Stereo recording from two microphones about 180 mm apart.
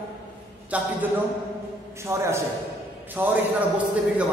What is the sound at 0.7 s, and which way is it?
Speech, 10° right (ahead or behind).